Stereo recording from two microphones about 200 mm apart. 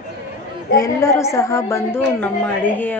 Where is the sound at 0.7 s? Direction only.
15° left (ahead or behind).